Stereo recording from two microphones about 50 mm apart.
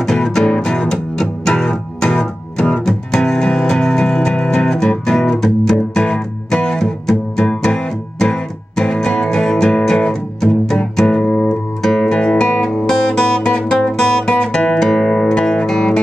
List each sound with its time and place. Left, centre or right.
0.0 s music: centre